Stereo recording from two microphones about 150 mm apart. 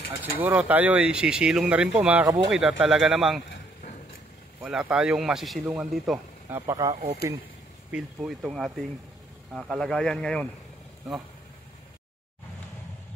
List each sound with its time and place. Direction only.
0.4 s a man's voice: 10° right (ahead or behind)
4.6 s a man's voice: 5° right (ahead or behind)
7.9 s speech: 5° right (ahead or behind)